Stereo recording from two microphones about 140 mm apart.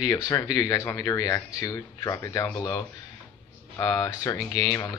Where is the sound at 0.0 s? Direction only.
25° left (ahead or behind).